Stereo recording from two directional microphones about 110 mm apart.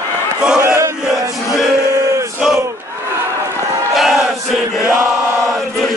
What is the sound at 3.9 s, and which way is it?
Chant, centre (ahead or behind).